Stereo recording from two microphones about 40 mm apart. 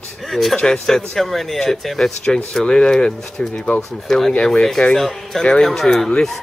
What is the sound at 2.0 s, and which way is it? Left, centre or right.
Speech, centre.